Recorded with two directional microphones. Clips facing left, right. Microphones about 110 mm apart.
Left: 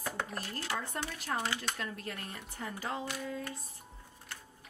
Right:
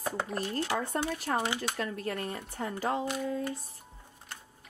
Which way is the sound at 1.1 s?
35° right (ahead or behind).